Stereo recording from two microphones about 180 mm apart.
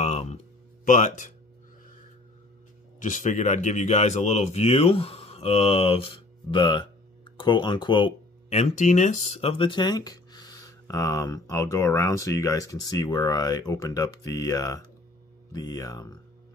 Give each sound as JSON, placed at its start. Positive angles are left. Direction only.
{"t": 0.0, "sound": "speech", "side_deg": 40}
{"t": 3.0, "sound": "speech", "side_deg": 45}
{"t": 8.5, "sound": "speech", "side_deg": 40}